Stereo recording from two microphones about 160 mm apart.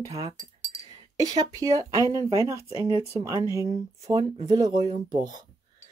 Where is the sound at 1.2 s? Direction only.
25° right (ahead or behind).